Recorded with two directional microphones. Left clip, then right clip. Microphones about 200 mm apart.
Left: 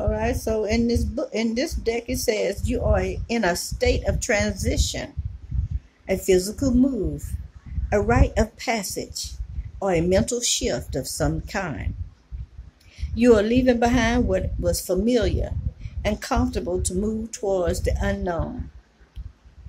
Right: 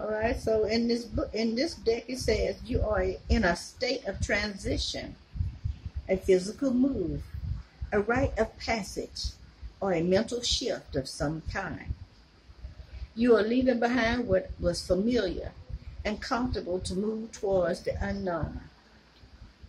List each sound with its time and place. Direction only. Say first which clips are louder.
0.1 s a woman's voice: left 3 dB; 45° left (ahead or behind)
6.0 s a woman's voice: left 5 dB; 45° left (ahead or behind)
7.9 s a woman's voice: left 6 dB; 45° left (ahead or behind)
13.1 s a woman's voice: left 6 dB; 45° left (ahead or behind)